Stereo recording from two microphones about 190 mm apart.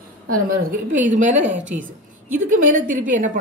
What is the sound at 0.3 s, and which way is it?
A woman's voice, 50° right (ahead or behind).